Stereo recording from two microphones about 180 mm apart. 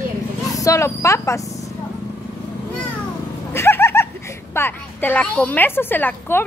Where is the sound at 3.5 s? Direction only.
15° left (ahead or behind).